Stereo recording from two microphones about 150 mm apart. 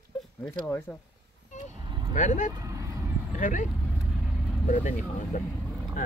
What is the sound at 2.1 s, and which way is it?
Speech, 55° left (ahead or behind).